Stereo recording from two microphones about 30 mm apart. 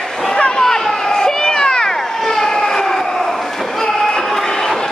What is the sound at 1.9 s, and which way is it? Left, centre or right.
Vehicle, centre.